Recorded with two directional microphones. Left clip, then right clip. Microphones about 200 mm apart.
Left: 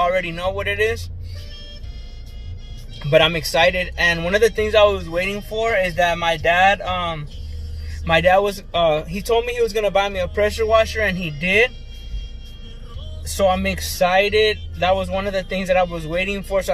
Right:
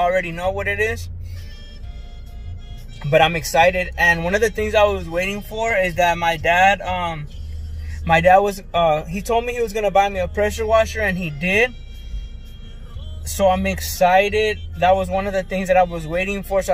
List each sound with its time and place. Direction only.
0.0 s speech: centre (ahead or behind)
3.2 s speech: 5° right (ahead or behind)
13.6 s speech: 5° right (ahead or behind)